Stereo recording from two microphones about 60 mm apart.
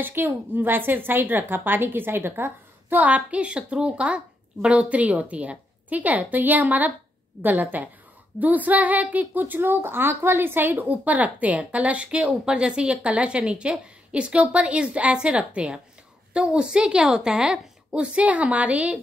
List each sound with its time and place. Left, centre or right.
0.0 s a woman's voice: right